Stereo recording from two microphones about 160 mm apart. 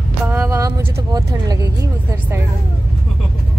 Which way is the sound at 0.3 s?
20° right (ahead or behind).